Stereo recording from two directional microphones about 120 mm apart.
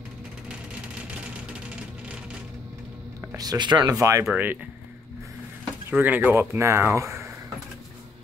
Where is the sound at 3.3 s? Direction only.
35° right (ahead or behind).